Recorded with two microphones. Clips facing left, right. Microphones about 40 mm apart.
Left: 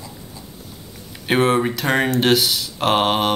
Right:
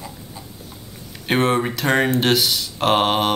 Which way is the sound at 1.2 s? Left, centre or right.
Centre.